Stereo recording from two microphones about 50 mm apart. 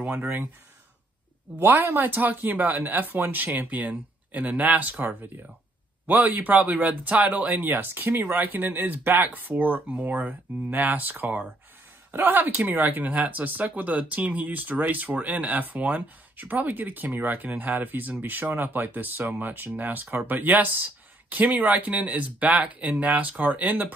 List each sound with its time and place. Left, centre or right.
0.0 s speech: right
2.0 s speech: right
7.7 s speech: right